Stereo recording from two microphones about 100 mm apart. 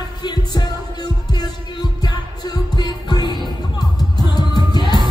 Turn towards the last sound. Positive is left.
turn(degrees=45)  # may be behind; listen again after turning